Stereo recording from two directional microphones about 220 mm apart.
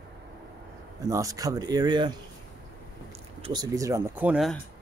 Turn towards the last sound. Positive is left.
turn(degrees=0)  # may be behind; listen again after turning